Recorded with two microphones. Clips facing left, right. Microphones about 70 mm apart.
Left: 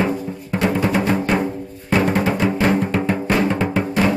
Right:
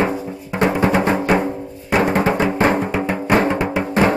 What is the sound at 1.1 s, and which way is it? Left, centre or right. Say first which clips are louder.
Drum: right 2 dB; centre.